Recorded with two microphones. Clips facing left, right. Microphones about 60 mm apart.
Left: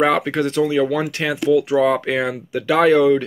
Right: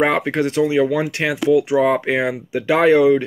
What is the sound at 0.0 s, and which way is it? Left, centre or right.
Speech, right.